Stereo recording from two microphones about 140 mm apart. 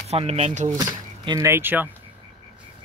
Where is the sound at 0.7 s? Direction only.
30° right (ahead or behind).